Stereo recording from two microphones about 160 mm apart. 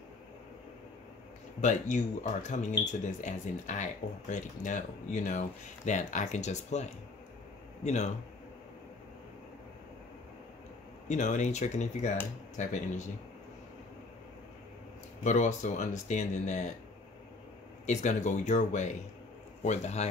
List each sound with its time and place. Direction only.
1.6 s a man's voice: 50° left (ahead or behind)
11.1 s speech: 50° left (ahead or behind)
15.2 s speech: 45° left (ahead or behind)
17.8 s speech: 50° left (ahead or behind)